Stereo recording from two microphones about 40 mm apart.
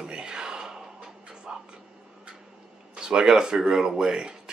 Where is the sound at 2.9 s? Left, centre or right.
Centre.